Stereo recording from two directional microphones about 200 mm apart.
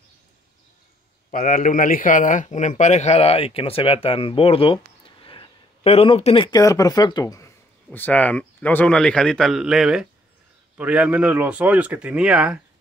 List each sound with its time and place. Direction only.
1.3 s a man's voice: 45° left (ahead or behind); by 12.5 s 5° right (ahead or behind)